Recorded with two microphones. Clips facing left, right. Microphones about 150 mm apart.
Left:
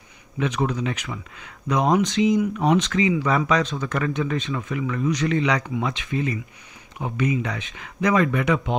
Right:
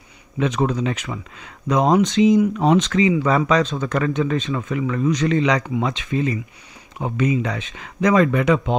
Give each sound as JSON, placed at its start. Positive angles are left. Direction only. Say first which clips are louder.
{"t": 0.4, "sound": "speech", "louder": "right 4 dB", "side_deg": -35}
{"t": 3.7, "sound": "speech", "louder": "right 4 dB", "side_deg": -40}